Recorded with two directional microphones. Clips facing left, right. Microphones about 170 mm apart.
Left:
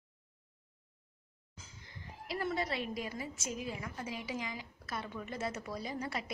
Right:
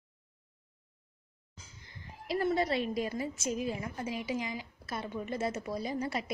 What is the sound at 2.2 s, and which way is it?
A woman's voice, 30° right (ahead or behind).